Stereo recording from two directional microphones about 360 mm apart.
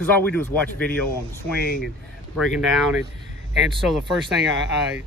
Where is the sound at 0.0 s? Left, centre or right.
Centre.